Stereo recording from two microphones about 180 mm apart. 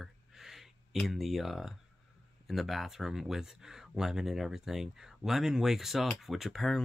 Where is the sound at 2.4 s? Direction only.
Centre (ahead or behind).